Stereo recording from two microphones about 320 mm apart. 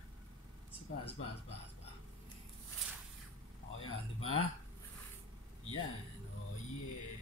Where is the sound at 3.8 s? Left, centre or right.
Left.